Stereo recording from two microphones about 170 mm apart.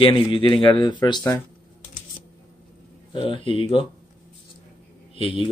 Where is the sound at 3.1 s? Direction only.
30° left (ahead or behind).